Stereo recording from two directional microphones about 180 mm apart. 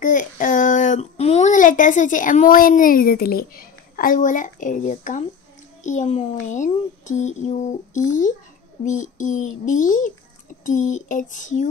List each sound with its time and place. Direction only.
0.0 s a child's voice: 45° left (ahead or behind)